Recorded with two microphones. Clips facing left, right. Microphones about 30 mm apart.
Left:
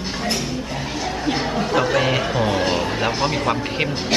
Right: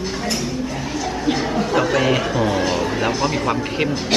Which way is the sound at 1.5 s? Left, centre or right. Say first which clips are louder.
Right 1 dB; centre.